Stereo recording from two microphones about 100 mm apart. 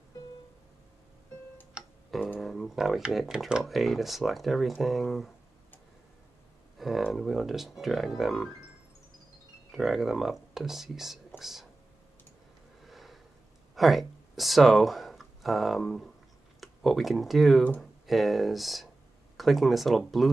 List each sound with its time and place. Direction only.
2.0 s tick: centre (ahead or behind)
2.4 s speech: centre (ahead or behind)
6.8 s speech: centre (ahead or behind)
9.7 s speech: centre (ahead or behind)
12.8 s a sound: centre (ahead or behind)
13.7 s speech: centre (ahead or behind)